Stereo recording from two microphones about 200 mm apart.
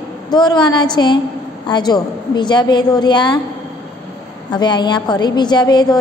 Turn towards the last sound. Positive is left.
turn(degrees=20)  # may be behind; listen again after turning